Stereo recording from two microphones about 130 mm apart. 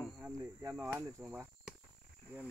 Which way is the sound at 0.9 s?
15° right (ahead or behind).